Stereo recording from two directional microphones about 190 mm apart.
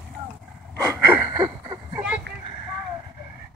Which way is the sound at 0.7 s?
15° right (ahead or behind).